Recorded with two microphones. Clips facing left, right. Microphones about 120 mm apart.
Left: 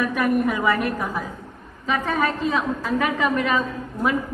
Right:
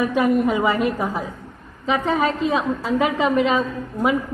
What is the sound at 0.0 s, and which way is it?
A woman's voice, 25° right (ahead or behind).